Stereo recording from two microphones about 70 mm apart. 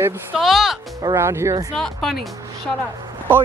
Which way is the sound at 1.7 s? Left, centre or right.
Centre.